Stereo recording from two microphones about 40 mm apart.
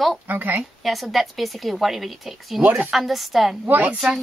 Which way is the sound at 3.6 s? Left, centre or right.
Right.